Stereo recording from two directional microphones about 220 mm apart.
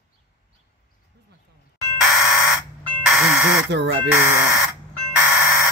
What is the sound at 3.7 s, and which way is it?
Speech, 55° right (ahead or behind).